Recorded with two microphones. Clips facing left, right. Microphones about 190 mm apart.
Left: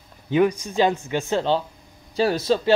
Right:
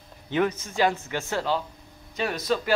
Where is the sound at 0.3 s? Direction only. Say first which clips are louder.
Left 6 dB; 15° left (ahead or behind).